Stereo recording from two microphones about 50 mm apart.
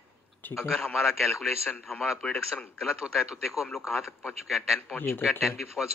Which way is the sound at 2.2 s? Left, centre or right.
Left.